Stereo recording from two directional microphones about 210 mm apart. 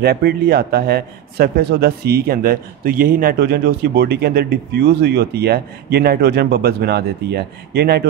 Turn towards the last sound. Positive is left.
turn(degrees=-50)  # may be behind; listen again after turning